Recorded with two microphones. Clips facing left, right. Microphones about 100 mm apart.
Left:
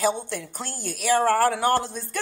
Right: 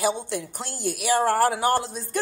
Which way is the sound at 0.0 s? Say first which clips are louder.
Even; 15° right (ahead or behind).